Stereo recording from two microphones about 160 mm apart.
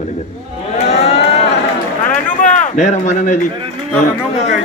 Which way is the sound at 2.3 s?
55° left (ahead or behind).